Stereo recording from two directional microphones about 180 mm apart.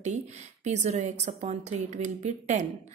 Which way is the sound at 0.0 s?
40° right (ahead or behind).